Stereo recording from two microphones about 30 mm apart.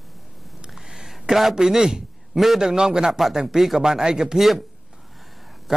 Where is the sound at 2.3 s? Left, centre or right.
Centre.